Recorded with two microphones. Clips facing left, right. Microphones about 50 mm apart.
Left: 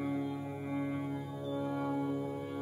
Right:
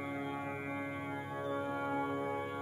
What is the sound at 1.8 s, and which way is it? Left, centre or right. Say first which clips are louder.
Music: left 1 dB; right.